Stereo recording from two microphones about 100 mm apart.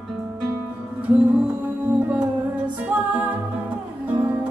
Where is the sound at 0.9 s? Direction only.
15° right (ahead or behind).